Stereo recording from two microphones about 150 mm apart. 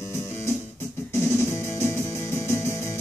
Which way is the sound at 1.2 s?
15° left (ahead or behind).